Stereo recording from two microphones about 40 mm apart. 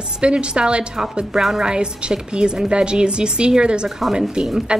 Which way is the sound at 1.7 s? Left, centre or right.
Right.